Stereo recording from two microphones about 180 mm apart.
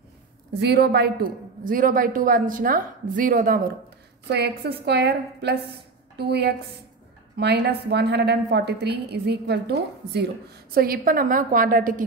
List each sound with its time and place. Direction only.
0.5 s a woman's voice: 65° right (ahead or behind); by 3.6 s 50° right (ahead or behind)
4.3 s a woman's voice: 65° right (ahead or behind); by 12.0 s 50° right (ahead or behind)